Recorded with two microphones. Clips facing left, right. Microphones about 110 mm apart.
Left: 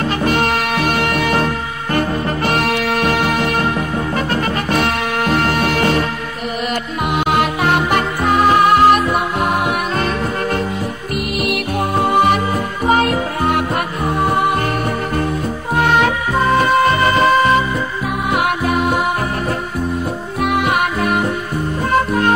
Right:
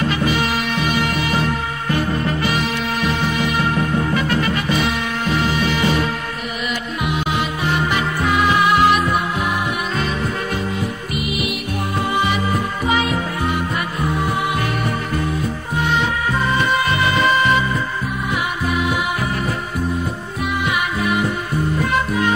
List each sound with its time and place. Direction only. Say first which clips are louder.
0.1 s music: left 3 dB; 50° left (ahead or behind)
4.1 s music: left 1 dB; 45° left (ahead or behind)
4.7 s music: left 4 dB; 60° left (ahead or behind)
7.1 s music: left 6 dB; 60° left (ahead or behind)
12.0 s music: left 6 dB; 50° left (ahead or behind)
15.7 s music: left 6 dB; 60° left (ahead or behind); by 17.6 s 45° left (ahead or behind)
18.3 s music: left 6 dB; 55° left (ahead or behind)
20.4 s music: left 5 dB; 55° left (ahead or behind)